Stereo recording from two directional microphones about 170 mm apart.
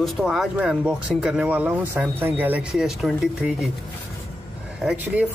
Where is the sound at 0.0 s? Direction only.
Centre (ahead or behind).